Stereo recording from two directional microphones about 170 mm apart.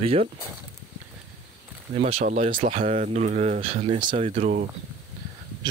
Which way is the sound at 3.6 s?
35° right (ahead or behind).